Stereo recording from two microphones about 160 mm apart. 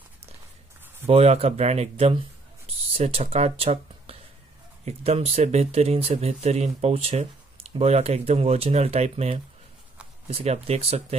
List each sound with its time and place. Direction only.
1.0 s speech: 40° right (ahead or behind)